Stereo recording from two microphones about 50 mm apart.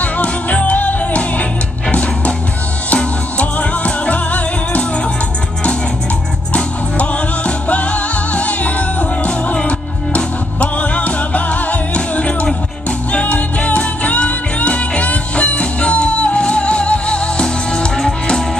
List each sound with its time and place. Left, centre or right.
0.0 s music: left
6.5 s music: left